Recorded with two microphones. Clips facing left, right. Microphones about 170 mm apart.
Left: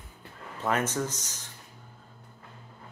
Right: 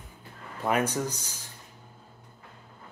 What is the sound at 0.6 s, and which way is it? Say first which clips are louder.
Speech: right 2 dB; 10° right (ahead or behind).